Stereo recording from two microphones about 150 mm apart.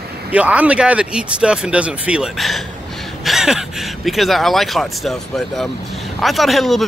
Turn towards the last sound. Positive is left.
turn(degrees=0)  # may be behind; listen again after turning